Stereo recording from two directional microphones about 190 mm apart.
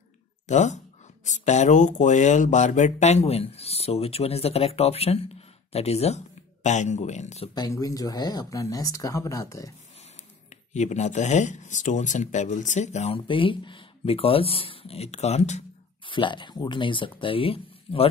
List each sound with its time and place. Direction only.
0.5 s speech: 40° left (ahead or behind)
7.5 s speech: 20° left (ahead or behind)
10.7 s speech: 40° left (ahead or behind)
16.1 s speech: 25° left (ahead or behind)